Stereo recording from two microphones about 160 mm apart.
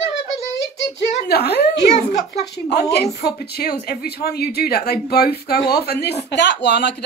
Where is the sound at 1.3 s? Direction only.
90° left.